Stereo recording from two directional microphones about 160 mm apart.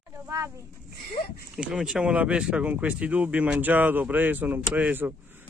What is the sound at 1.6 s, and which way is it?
Speech, 5° right (ahead or behind).